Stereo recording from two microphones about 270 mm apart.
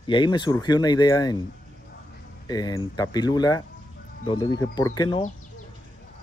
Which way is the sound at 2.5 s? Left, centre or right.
Centre.